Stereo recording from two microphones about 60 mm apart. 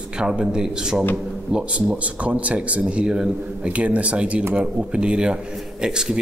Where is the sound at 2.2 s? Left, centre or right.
Right.